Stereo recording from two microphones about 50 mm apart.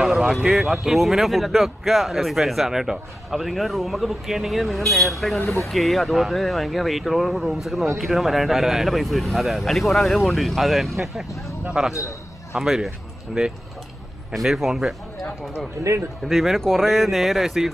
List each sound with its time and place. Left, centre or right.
0.0 s speech: centre
15.8 s a man's voice: right
16.3 s speech: centre